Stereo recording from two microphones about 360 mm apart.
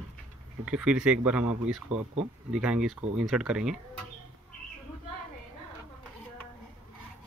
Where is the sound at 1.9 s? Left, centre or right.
Centre.